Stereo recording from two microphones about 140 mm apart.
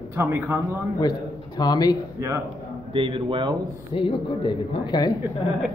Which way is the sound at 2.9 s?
40° right (ahead or behind).